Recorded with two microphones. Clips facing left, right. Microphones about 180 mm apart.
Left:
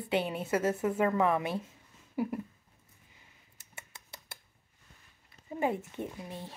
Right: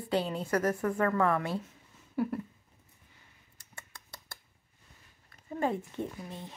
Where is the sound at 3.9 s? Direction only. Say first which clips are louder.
Even; 25° left (ahead or behind).